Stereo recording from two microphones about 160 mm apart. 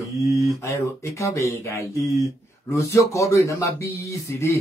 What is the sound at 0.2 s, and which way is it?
Mantra, 20° right (ahead or behind).